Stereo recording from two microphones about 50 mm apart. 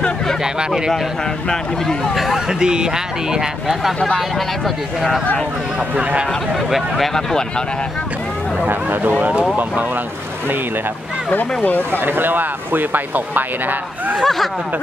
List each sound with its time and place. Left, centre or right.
0.4 s speech: centre
2.1 s speech: centre
2.6 s speech: centre
11.3 s speech: left
12.0 s speech: right
14.2 s speech: centre